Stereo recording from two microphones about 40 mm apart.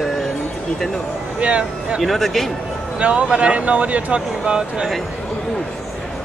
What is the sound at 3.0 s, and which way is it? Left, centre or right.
Speech, right.